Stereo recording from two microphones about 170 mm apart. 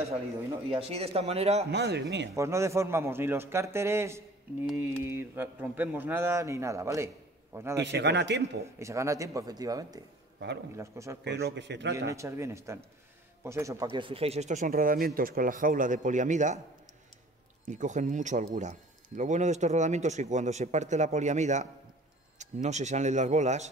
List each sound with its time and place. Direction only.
0.7 s speech: 35° right (ahead or behind)
1.7 s speech: 80° right
2.3 s speech: 15° right (ahead or behind)
7.8 s speech: 85° right
8.7 s speech: 15° right (ahead or behind)
11.2 s a man's voice: 90° right
12.1 s speech: 15° right (ahead or behind)
13.9 s speech: 30° right (ahead or behind); by 16.5 s 45° right (ahead or behind)
17.6 s speech: 45° right (ahead or behind)